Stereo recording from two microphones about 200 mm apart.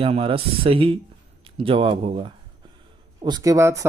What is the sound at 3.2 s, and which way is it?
Speech, 20° right (ahead or behind).